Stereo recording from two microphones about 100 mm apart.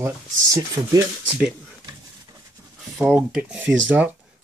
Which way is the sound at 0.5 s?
35° right (ahead or behind).